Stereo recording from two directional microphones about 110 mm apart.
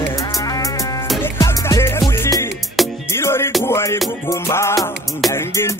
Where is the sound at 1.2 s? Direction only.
25° left (ahead or behind).